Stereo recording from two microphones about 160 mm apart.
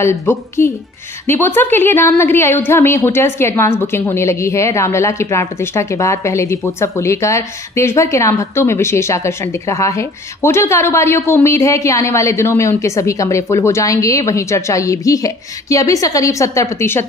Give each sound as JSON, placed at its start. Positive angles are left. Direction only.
{"t": 0.0, "sound": "a woman's voice", "side_deg": 15}